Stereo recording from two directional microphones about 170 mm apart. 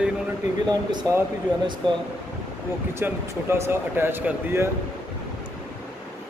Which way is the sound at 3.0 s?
15° right (ahead or behind).